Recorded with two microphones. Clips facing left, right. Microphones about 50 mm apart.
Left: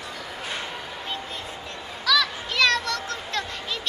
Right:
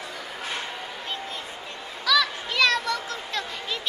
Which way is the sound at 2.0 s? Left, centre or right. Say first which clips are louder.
Even; centre.